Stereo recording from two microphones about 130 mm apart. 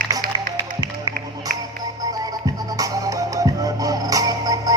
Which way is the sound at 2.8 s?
25° right (ahead or behind).